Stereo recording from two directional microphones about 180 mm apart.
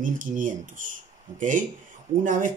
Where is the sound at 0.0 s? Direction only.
45° right (ahead or behind).